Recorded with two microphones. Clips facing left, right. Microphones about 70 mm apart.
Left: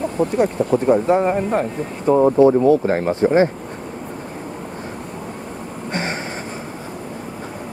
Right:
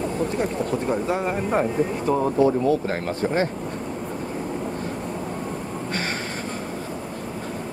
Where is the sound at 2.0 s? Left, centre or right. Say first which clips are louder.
Left 9 dB; left.